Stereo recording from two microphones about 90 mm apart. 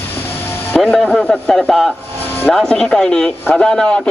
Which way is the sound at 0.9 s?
10° left (ahead or behind).